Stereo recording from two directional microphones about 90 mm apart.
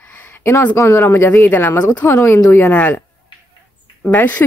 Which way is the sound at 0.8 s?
30° left (ahead or behind).